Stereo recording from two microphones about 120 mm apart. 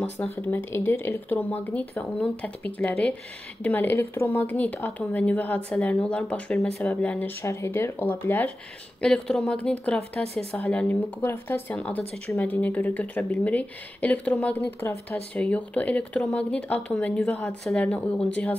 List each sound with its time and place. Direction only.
0.0 s speech: 15° left (ahead or behind)